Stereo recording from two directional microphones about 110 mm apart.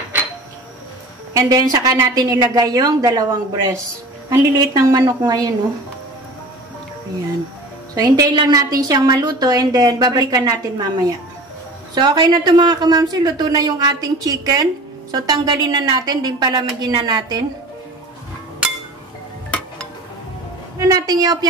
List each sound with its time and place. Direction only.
1.3 s a woman's voice: 30° right (ahead or behind)
7.9 s a woman's voice: 35° right (ahead or behind)
20.9 s a woman's voice: 35° right (ahead or behind)